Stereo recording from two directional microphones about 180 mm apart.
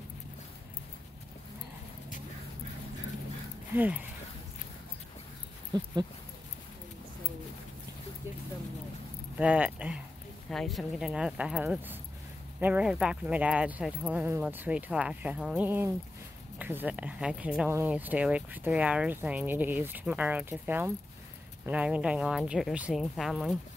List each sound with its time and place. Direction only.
3.7 s speech: 10° right (ahead or behind)
5.7 s speech: 25° right (ahead or behind)
9.4 s speech: 5° right (ahead or behind)